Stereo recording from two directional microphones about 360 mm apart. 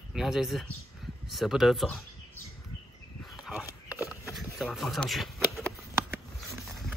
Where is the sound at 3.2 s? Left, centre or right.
Centre.